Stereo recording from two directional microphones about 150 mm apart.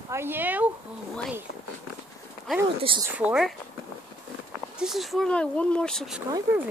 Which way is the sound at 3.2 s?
5° right (ahead or behind).